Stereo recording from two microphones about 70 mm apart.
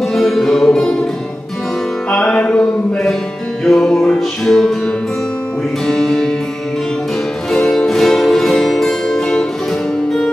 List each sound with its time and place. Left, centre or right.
0.0 s music: centre
2.0 s music: centre
3.6 s music: centre
5.9 s music: centre
7.5 s music: centre